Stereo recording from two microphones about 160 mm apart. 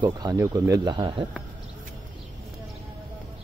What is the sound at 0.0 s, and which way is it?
Speech, 25° right (ahead or behind).